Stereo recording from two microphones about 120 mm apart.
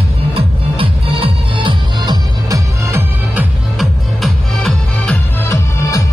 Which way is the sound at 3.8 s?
Centre (ahead or behind).